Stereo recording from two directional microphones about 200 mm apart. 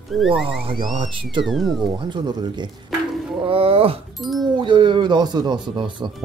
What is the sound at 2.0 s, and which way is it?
Speech, 20° right (ahead or behind).